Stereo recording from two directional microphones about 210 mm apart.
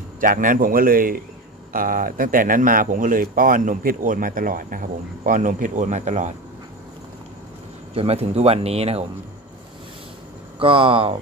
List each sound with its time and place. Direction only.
0.2 s speech: 40° right (ahead or behind)
7.9 s speech: 30° right (ahead or behind)
10.6 s speech: 25° right (ahead or behind)